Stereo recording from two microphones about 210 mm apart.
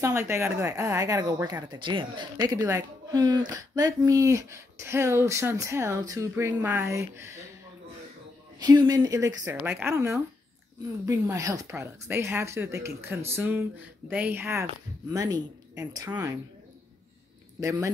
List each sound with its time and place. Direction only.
0.0 s speech: 10° right (ahead or behind)
8.6 s speech: 20° right (ahead or behind)
17.6 s speech: 15° right (ahead or behind)